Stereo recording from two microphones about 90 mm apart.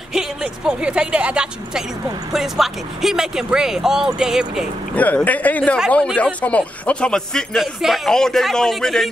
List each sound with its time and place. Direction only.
0.1 s speech: 5° right (ahead or behind)
4.9 s speech: 15° left (ahead or behind)